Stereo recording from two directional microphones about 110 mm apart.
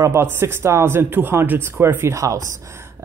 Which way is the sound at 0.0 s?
20° right (ahead or behind).